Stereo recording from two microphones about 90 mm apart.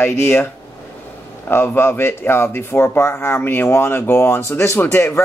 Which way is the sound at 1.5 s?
25° left (ahead or behind).